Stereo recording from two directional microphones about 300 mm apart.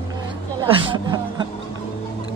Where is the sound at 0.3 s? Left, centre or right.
Centre.